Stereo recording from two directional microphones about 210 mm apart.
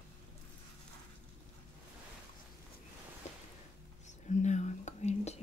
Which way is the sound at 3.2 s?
35° left (ahead or behind).